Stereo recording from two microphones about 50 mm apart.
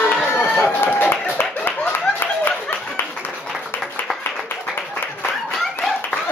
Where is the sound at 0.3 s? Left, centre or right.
Left.